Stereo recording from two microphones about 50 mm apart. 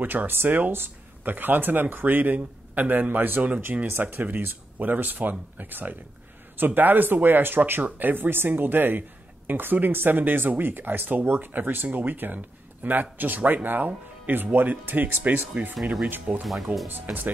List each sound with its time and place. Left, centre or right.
0.0 s speech: right
3.8 s speech: right
16.9 s speech: right